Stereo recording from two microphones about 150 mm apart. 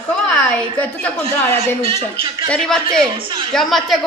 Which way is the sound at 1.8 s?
35° right (ahead or behind).